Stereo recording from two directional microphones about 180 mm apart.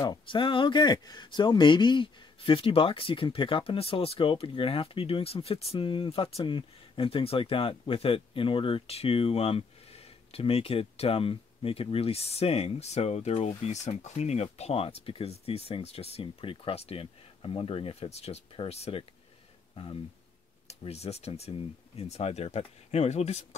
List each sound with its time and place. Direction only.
0.0 s speech: 25° left (ahead or behind)
20.6 s speech: 35° left (ahead or behind)